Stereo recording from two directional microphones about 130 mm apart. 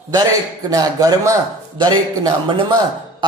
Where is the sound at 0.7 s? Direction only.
30° right (ahead or behind).